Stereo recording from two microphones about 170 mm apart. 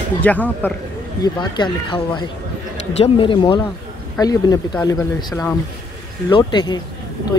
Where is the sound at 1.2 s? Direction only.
25° left (ahead or behind).